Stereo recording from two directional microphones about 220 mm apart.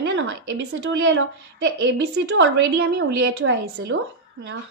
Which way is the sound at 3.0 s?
50° right (ahead or behind).